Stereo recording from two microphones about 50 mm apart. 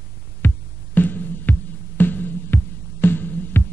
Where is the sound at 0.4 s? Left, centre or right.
Left.